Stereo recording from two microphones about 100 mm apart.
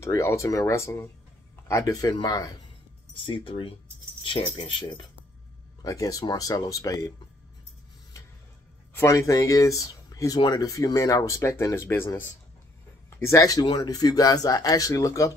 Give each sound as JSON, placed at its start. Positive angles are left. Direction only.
{"t": 0.0, "sound": "speech", "side_deg": 30}
{"t": 3.3, "sound": "speech", "side_deg": 55}
{"t": 5.8, "sound": "speech", "side_deg": 35}
{"t": 8.9, "sound": "speech", "side_deg": 25}